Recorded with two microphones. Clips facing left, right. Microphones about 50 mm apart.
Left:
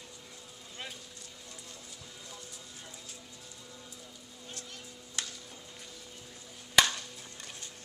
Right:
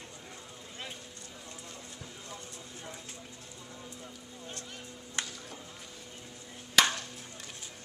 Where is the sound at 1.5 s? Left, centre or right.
Right.